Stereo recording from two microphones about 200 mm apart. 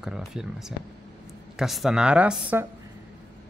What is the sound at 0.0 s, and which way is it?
A woman's voice, 5° right (ahead or behind).